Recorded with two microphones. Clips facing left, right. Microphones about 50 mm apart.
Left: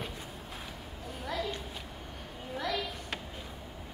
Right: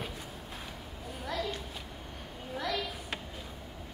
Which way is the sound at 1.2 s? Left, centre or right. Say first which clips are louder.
Even; centre.